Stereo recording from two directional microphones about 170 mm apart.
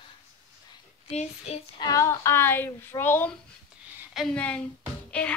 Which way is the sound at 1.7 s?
20° left (ahead or behind).